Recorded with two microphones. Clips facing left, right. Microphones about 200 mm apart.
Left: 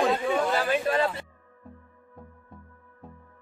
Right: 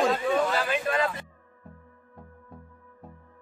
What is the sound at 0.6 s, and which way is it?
Speech, 35° left (ahead or behind).